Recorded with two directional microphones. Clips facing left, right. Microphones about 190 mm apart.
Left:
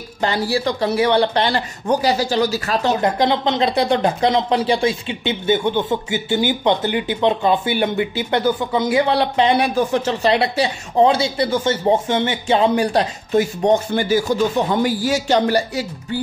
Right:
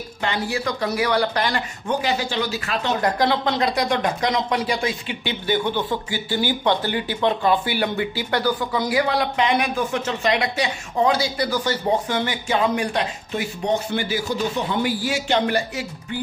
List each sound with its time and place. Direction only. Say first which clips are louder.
0.2 s speech: left 5 dB; 35° left (ahead or behind)
3.0 s speech: left 3 dB; 20° left (ahead or behind)